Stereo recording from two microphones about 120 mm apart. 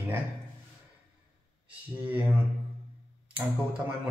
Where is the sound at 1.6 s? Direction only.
10° right (ahead or behind).